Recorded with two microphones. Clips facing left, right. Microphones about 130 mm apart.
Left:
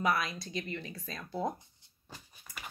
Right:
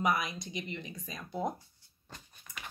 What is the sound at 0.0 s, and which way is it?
Speech, 15° right (ahead or behind).